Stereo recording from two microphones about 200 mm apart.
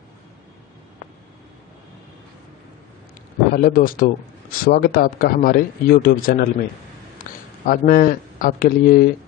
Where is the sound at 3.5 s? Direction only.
45° left (ahead or behind).